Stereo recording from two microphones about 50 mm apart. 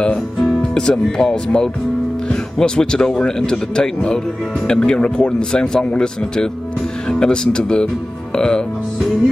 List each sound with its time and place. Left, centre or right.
0.0 s music: left
0.6 s speech: centre